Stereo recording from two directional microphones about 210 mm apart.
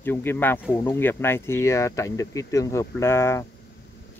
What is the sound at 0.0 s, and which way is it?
Speech, 10° left (ahead or behind).